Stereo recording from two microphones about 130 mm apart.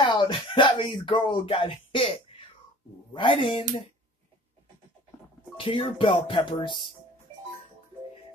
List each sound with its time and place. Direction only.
0.0 s speech: 35° left (ahead or behind)
5.6 s speech: 40° left (ahead or behind)